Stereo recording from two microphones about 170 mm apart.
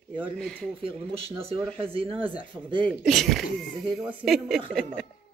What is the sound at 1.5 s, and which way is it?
Speech, 35° right (ahead or behind).